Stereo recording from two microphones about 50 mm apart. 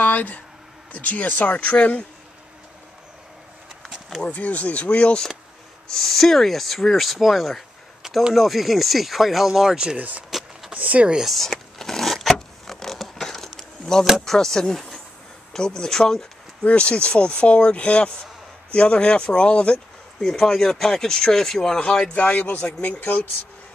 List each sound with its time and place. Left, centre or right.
0.0 s a sound: left
0.9 s speech: left
3.8 s a sound: centre
4.2 s speech: left
5.9 s speech: centre
9.9 s speech: right
11.2 s a sound: centre
14.2 s speech: centre
16.6 s speech: left
20.2 s speech: centre
22.1 s speech: left